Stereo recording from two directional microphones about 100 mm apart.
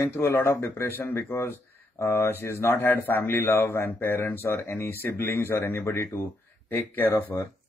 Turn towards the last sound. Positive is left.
turn(degrees=20)  # may be behind; listen again after turning